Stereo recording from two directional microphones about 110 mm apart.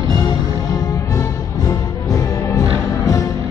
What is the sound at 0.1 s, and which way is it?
Music, 35° left (ahead or behind).